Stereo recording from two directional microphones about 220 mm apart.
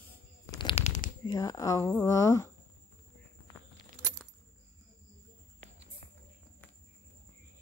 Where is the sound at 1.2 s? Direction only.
15° left (ahead or behind).